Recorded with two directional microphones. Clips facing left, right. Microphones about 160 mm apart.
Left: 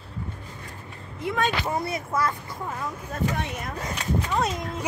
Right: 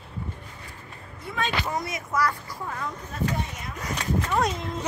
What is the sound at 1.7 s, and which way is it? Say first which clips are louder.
Speech: left 2 dB; 30° left (ahead or behind).